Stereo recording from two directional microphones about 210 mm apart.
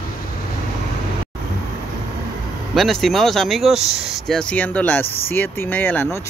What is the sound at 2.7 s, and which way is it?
Speech, centre (ahead or behind).